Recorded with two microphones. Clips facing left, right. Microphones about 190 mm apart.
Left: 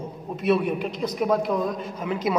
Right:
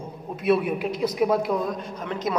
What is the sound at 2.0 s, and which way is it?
Speech, 5° left (ahead or behind).